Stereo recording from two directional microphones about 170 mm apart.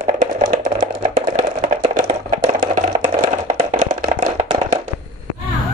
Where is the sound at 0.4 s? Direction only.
50° right (ahead or behind).